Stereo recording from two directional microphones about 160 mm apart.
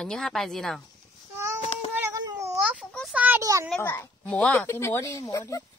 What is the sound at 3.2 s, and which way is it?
Speech, 10° right (ahead or behind).